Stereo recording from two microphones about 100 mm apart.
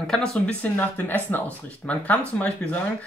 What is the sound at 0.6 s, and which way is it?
Speech, 15° left (ahead or behind).